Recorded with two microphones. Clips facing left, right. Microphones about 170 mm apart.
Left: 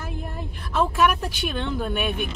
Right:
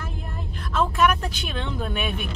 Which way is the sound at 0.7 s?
5° left (ahead or behind).